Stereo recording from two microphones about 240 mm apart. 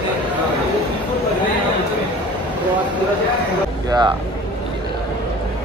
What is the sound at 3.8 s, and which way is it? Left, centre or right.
Speech, centre.